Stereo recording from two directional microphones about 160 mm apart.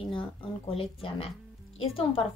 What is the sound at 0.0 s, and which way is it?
A woman's voice, 30° left (ahead or behind).